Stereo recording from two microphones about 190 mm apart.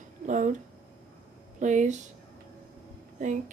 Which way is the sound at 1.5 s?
40° right (ahead or behind).